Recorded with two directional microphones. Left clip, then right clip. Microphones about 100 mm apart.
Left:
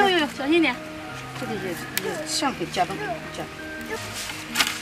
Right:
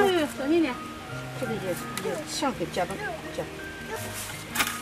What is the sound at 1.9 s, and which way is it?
Speech, 20° left (ahead or behind).